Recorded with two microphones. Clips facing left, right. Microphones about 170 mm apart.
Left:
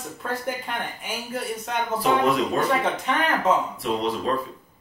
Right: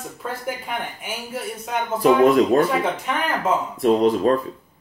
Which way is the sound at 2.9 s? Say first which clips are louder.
Even; 10° right (ahead or behind).